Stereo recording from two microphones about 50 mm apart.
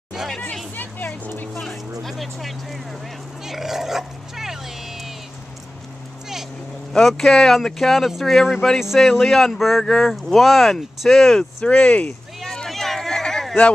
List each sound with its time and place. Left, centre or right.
0.2 s hubbub: centre
0.7 s vehicle: left
1.5 s vehicle: centre
3.4 s dog: centre
6.9 s speech: centre
11.6 s speech: left
12.6 s a sound: centre